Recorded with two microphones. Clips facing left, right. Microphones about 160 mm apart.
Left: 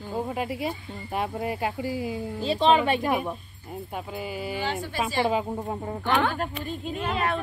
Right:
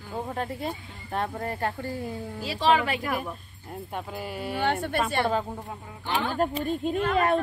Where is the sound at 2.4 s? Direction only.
25° left (ahead or behind).